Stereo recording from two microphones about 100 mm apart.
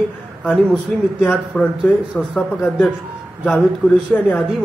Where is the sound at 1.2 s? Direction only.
10° left (ahead or behind).